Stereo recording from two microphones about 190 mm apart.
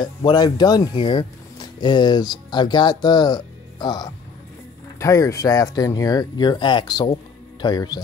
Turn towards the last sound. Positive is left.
turn(degrees=20)  # may be behind; listen again after turning